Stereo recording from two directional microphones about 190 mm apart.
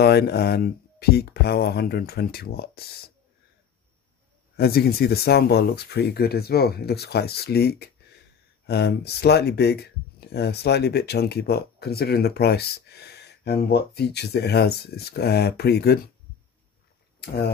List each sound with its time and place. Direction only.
0.0 s speech: 55° left (ahead or behind)
4.6 s speech: 55° left (ahead or behind)